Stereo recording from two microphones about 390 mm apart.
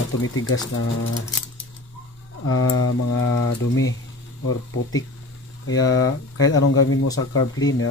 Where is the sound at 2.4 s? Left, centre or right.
Left.